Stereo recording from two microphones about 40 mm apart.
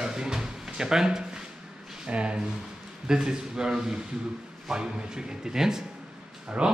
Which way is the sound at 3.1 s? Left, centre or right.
Centre.